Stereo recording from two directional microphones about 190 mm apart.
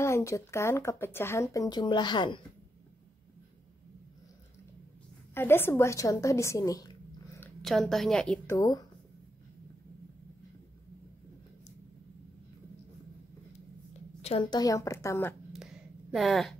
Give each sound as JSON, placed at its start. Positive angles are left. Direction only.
{"t": 0.0, "sound": "speech", "side_deg": 15}
{"t": 5.3, "sound": "a woman's voice", "side_deg": 10}
{"t": 7.6, "sound": "a woman's voice", "side_deg": 0}
{"t": 8.5, "sound": "speech", "side_deg": 20}
{"t": 14.2, "sound": "a woman's voice", "side_deg": 30}
{"t": 14.6, "sound": "speech", "side_deg": 15}
{"t": 15.5, "sound": "a sound", "side_deg": -5}